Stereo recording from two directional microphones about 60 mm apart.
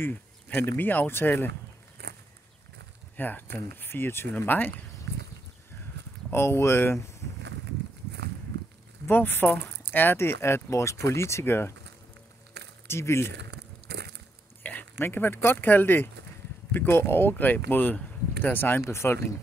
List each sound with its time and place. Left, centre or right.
0.1 s a sound: left
0.7 s speech: left
3.2 s speech: left
6.3 s speech: left
9.0 s speech: left
10.1 s speech: left
12.8 s speech: left
14.6 s speech: left
18.9 s speech: left